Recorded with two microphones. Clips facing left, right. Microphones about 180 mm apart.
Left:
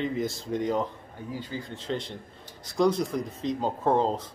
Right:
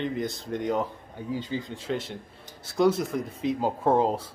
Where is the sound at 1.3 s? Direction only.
20° right (ahead or behind).